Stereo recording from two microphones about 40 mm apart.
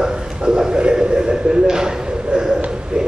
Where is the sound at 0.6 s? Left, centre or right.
Centre.